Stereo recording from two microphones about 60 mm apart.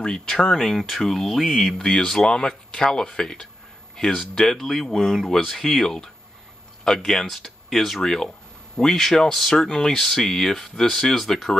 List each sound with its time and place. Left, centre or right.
0.0 s speech: centre
1.8 s speech: centre